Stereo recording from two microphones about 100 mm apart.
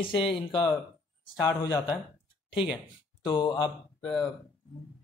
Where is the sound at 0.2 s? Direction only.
60° left (ahead or behind).